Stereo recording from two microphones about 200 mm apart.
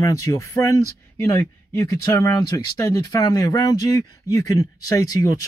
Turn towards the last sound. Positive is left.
turn(degrees=15)  # may be behind; listen again after turning